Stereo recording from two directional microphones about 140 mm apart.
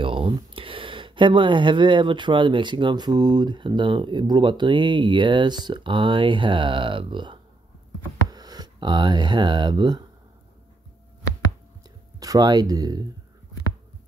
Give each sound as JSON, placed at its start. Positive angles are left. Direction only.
{"t": 0.0, "sound": "speech", "side_deg": -40}
{"t": 12.2, "sound": "speech", "side_deg": -30}